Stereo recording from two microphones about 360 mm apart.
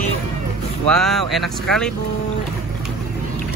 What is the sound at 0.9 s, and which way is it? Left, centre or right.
Speech, centre.